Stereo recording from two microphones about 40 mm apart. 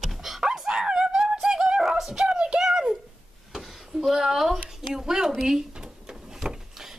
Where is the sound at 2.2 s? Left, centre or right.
Right.